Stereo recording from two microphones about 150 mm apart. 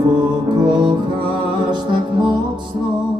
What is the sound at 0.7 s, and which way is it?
Music, 30° right (ahead or behind).